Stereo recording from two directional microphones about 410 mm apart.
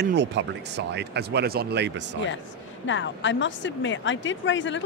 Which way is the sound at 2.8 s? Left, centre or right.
Left.